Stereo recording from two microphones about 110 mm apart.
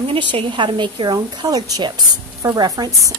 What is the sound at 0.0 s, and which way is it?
A woman's voice, 55° right (ahead or behind).